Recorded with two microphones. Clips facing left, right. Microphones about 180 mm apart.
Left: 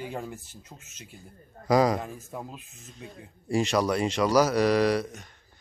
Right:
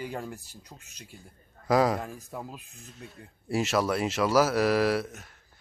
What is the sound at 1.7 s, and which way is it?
Speech, centre (ahead or behind).